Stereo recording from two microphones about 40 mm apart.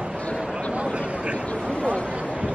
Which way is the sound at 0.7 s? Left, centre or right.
Right.